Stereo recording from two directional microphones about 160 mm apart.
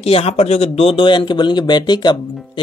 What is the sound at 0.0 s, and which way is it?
Speech, 40° left (ahead or behind).